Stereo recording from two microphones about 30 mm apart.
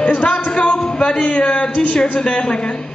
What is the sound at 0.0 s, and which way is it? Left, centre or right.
Music, left.